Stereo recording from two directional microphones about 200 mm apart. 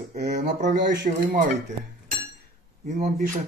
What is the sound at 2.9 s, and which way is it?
Speech, 35° right (ahead or behind).